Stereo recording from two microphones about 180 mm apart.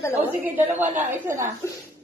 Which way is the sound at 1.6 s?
15° left (ahead or behind).